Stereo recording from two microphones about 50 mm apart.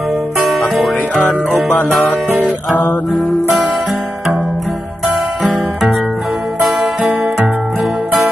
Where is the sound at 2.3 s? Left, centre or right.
Right.